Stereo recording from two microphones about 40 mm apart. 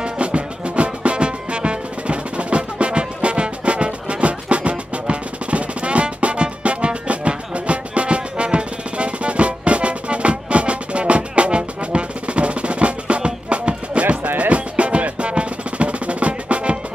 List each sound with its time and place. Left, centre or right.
0.0 s music: right